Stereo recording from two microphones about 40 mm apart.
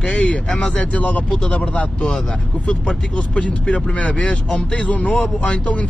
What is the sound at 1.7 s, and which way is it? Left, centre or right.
Speech, left.